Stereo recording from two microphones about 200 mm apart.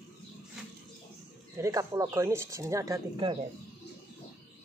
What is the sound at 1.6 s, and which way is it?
Speech, 15° right (ahead or behind).